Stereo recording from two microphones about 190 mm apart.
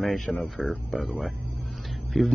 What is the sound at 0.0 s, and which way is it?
Speech, centre (ahead or behind).